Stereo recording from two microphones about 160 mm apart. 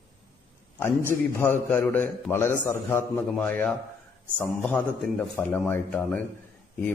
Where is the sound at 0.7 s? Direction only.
15° left (ahead or behind).